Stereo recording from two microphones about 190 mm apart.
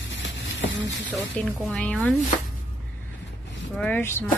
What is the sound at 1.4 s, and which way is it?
Speech, 5° left (ahead or behind).